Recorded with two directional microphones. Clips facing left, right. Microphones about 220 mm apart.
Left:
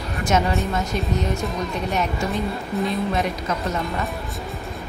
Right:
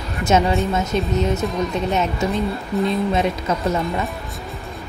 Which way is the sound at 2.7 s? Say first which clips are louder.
Right 4 dB; centre (ahead or behind).